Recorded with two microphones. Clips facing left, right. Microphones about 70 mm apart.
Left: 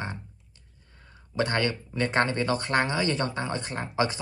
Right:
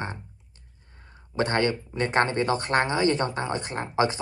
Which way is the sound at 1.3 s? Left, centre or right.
Right.